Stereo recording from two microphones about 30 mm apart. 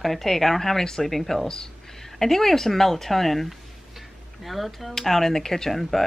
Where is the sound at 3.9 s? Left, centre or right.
Centre.